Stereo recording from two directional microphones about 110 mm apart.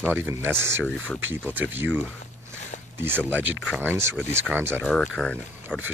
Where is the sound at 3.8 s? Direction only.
20° right (ahead or behind).